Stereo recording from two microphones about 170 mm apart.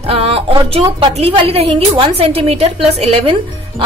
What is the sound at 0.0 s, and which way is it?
Music, 35° right (ahead or behind).